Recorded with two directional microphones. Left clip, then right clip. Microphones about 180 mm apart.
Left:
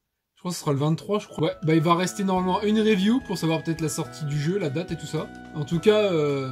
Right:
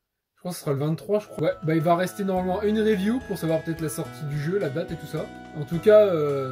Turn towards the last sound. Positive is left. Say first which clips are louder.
# right 4 dB
turn(degrees=0)  # may be behind; listen again after turning